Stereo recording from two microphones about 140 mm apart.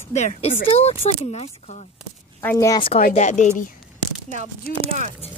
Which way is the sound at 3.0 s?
75° left (ahead or behind).